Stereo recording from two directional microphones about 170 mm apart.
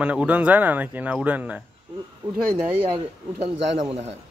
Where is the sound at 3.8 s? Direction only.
35° right (ahead or behind).